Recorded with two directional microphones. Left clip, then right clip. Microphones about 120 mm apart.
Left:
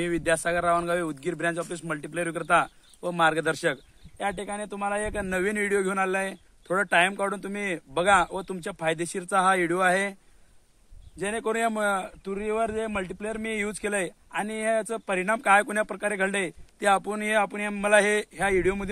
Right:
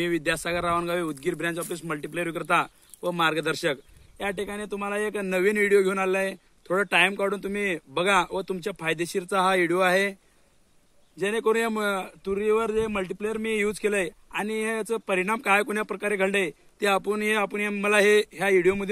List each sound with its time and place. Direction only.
0.0 s speech: 30° left (ahead or behind)
11.1 s speech: 35° left (ahead or behind)